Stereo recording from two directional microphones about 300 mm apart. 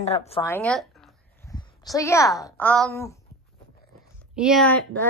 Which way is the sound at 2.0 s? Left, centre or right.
Centre.